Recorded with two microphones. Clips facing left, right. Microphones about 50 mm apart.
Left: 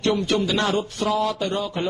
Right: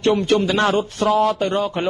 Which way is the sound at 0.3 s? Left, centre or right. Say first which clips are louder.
Right 4 dB; right.